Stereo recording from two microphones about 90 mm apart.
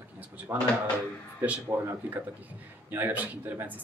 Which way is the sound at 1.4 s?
20° right (ahead or behind).